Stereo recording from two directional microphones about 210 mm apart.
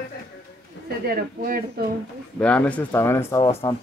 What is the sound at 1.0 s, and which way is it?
Speech, 45° right (ahead or behind).